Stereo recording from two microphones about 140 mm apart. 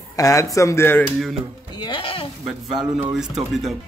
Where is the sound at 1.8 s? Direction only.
35° left (ahead or behind).